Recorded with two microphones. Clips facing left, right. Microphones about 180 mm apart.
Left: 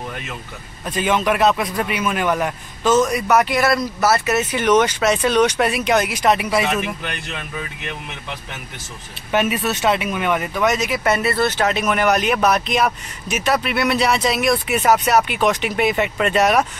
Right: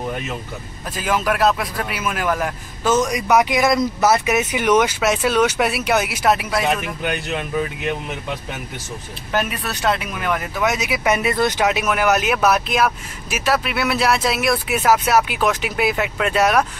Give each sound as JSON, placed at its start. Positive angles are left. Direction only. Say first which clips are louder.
{"t": 0.8, "sound": "speech", "louder": "left 2 dB", "side_deg": 0}
{"t": 2.9, "sound": "speech", "louder": "left 1 dB", "side_deg": -10}
{"t": 9.3, "sound": "speech", "louder": "left 4 dB", "side_deg": 0}